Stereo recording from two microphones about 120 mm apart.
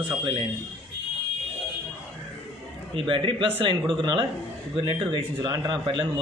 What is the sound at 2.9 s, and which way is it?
A man's voice, 45° right (ahead or behind).